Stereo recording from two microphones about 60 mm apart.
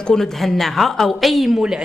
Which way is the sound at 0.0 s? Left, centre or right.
Centre.